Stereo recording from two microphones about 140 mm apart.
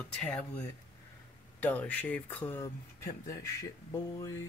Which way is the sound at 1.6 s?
10° left (ahead or behind).